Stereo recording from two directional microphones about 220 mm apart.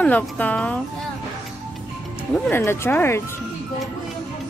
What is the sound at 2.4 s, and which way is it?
Speech, 10° left (ahead or behind).